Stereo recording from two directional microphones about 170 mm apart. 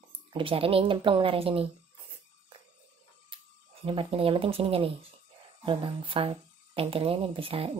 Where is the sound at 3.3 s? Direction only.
30° right (ahead or behind).